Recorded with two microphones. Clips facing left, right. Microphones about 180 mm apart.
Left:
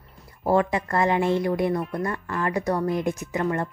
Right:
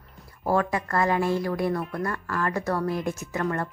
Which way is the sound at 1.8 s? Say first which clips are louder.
Left 2 dB; centre (ahead or behind).